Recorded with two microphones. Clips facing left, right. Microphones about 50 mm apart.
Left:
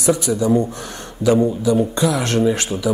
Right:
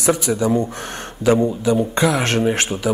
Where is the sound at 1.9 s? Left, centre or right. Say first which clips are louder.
Right 1 dB; right.